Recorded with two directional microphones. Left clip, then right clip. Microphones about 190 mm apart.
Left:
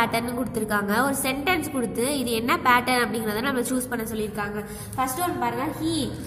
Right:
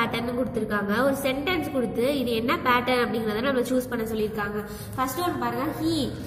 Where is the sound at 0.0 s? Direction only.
25° left (ahead or behind).